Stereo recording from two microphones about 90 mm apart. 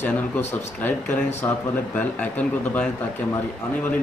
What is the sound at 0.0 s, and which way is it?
Speech, 20° left (ahead or behind).